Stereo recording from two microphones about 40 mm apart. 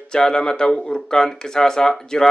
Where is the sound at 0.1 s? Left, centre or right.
Centre.